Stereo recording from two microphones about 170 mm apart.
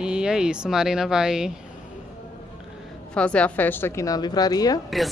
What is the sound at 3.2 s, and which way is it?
Speech, 5° left (ahead or behind).